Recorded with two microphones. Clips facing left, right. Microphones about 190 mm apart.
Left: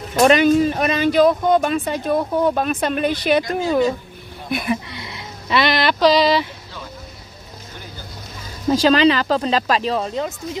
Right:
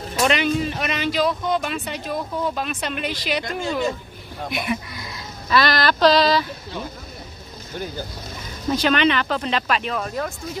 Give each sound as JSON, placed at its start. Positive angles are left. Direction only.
{"t": 0.1, "sound": "speech", "side_deg": 50}
{"t": 4.6, "sound": "speech", "side_deg": 25}
{"t": 8.8, "sound": "speech", "side_deg": 30}